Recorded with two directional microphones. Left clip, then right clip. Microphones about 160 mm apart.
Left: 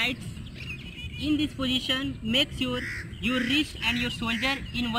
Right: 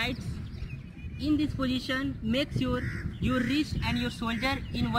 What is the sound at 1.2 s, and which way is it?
Speech, centre (ahead or behind).